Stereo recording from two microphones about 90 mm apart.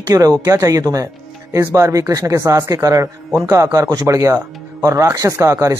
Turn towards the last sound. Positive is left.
turn(degrees=-35)  # may be behind; listen again after turning